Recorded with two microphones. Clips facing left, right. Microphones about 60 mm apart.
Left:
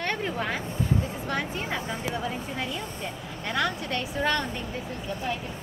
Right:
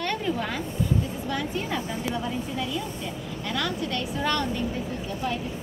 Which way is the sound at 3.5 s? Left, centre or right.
Left.